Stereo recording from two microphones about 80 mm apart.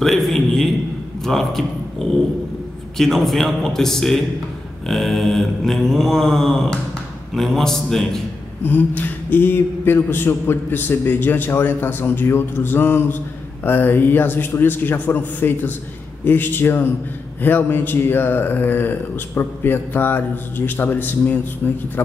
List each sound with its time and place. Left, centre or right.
0.0 s a sound: centre
1.2 s mantra: centre
2.0 s dog: centre
3.0 s mantra: centre
8.6 s a man's voice: left